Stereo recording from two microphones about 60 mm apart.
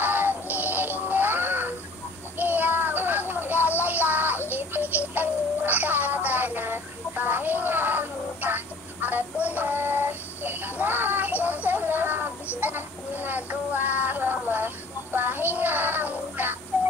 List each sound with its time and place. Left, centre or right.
0.0 s synthetic singing: right
1.0 s music: right
2.3 s child singing: right
3.8 s music: right
12.5 s a sound: right
13.2 s child singing: right